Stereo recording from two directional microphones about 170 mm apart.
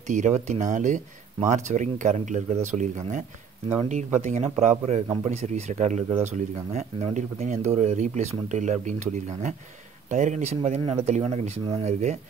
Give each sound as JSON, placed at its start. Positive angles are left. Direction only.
{"t": 0.1, "sound": "speech", "side_deg": -45}
{"t": 5.0, "sound": "speech", "side_deg": -25}
{"t": 5.3, "sound": "speech", "side_deg": -40}